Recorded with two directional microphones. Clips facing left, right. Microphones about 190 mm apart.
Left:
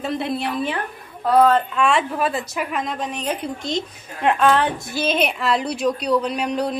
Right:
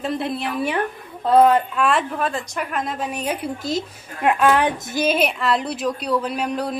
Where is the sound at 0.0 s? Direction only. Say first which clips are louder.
Even; centre (ahead or behind).